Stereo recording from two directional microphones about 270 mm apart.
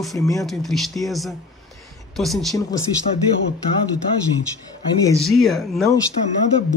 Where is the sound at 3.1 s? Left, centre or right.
Left.